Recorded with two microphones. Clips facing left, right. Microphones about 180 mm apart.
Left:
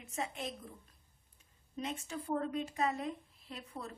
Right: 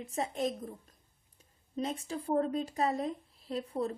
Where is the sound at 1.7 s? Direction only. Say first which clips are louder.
Right 5 dB; 35° right (ahead or behind).